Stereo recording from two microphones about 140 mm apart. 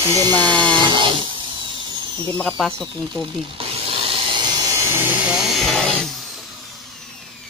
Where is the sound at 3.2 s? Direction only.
40° right (ahead or behind).